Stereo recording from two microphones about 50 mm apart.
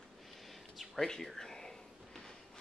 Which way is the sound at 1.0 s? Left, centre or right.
Centre.